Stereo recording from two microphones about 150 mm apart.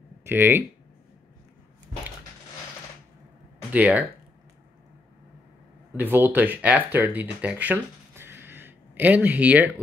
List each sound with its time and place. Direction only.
0.2 s speech: 15° right (ahead or behind)
3.7 s speech: 10° right (ahead or behind)
5.9 s speech: 15° right (ahead or behind)